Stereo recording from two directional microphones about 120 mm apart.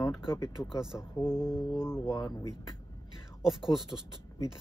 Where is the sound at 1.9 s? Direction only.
25° left (ahead or behind).